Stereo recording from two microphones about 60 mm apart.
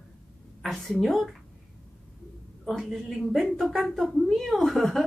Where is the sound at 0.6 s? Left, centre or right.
Centre.